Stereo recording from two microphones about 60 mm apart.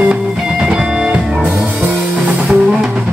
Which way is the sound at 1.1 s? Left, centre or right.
Right.